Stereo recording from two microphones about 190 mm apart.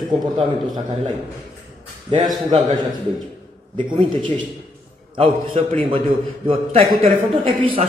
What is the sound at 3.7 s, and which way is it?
A man's voice, 25° right (ahead or behind).